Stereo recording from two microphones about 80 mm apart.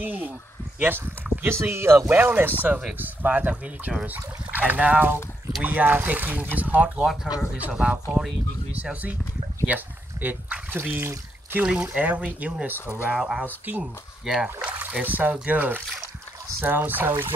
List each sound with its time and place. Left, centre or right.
0.0 s speech: right
9.7 s speech: centre
11.6 s speech: centre
14.6 s speech: centre